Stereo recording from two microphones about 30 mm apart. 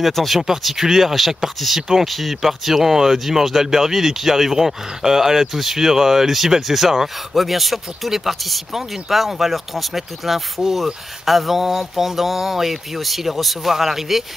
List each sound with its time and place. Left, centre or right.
0.1 s speech: centre
0.7 s speech: centre
1.1 s speech: centre
1.8 s speech: centre
2.0 s speech: centre